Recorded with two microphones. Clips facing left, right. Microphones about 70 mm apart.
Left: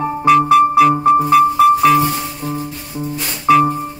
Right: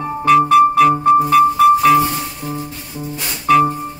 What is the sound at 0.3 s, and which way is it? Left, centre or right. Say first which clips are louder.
Music: even; centre.